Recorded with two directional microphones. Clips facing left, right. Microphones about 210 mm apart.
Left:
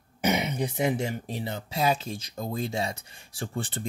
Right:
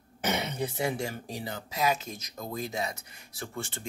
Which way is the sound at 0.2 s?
15° left (ahead or behind).